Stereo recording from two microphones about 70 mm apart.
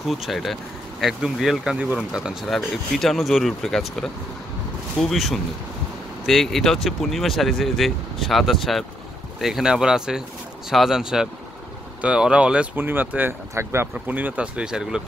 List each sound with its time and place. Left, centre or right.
0.1 s speech: centre
2.4 s speech: centre
12.7 s speech: right
13.6 s speech: right
13.9 s speech: right; by 15.0 s centre